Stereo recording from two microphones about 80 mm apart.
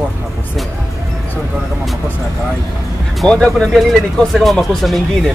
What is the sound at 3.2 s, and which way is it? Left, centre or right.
Music, centre.